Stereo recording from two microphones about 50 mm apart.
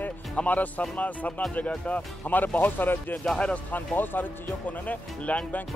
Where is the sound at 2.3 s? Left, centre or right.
Left.